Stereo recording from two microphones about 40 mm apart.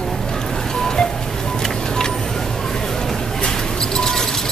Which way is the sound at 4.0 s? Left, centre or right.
Centre.